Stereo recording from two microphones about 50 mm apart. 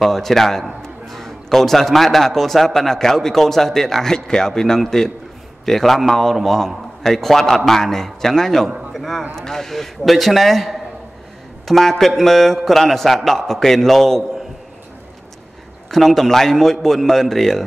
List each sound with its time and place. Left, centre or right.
0.0 s a man's voice: centre
15.9 s a man's voice: centre